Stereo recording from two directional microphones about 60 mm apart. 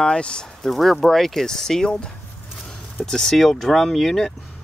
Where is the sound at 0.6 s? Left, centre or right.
Centre.